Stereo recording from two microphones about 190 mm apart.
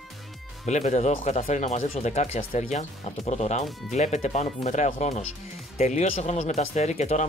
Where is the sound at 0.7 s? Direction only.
40° left (ahead or behind).